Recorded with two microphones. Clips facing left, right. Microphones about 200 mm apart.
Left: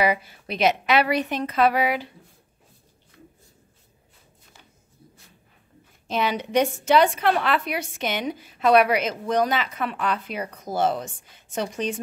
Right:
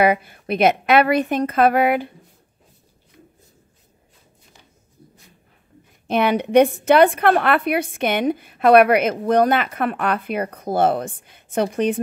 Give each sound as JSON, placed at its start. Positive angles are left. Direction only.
{"t": 0.0, "sound": "a woman's voice", "side_deg": -55}
{"t": 6.0, "sound": "a woman's voice", "side_deg": -60}